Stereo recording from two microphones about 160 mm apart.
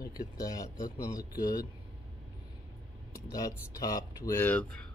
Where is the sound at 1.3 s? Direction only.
65° left (ahead or behind).